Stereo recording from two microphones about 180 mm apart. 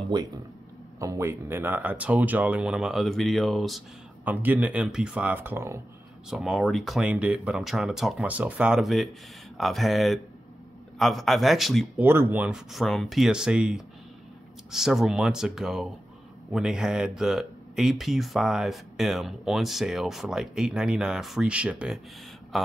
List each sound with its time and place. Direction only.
0.1 s speech: 25° right (ahead or behind)
6.3 s speech: centre (ahead or behind)
12.0 s speech: 10° right (ahead or behind)